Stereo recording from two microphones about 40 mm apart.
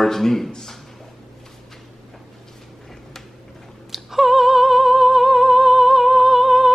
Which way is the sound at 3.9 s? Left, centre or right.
Centre.